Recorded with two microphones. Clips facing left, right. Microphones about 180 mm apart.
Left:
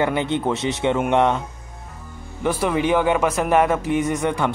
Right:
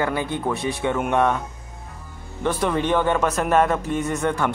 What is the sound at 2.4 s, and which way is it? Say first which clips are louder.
Speech: left 2 dB; 10° left (ahead or behind).